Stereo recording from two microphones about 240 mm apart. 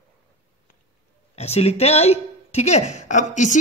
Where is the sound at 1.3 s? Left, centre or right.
Left.